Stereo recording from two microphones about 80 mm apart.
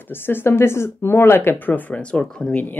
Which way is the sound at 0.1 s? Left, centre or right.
Left.